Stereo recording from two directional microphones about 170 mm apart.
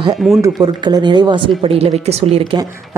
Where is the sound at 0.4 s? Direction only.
25° right (ahead or behind).